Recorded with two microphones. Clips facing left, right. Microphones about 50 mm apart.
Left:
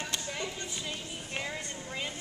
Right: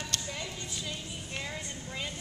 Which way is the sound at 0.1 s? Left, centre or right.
Centre.